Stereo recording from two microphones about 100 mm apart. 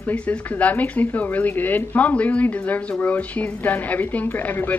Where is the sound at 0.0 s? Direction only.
10° left (ahead or behind).